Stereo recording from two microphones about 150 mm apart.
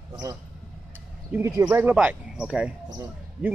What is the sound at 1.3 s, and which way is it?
A man's voice, 10° right (ahead or behind).